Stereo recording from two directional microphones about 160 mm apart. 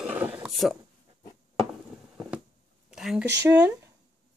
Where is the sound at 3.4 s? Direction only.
10° right (ahead or behind).